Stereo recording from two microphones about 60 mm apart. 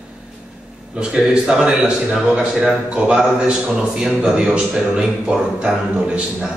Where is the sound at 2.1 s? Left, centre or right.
Centre.